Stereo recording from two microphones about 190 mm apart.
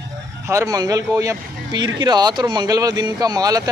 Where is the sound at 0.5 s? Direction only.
15° right (ahead or behind).